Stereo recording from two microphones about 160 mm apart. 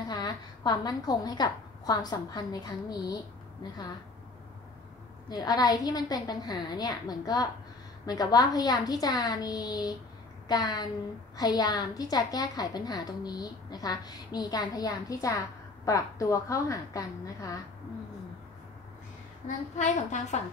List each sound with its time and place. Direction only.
0.1 s a woman's voice: 25° left (ahead or behind)
5.3 s a woman's voice: 25° left (ahead or behind)
19.4 s a woman's voice: 45° left (ahead or behind)